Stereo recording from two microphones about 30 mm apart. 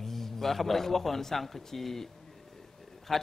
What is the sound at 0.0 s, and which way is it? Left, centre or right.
A man's voice, centre.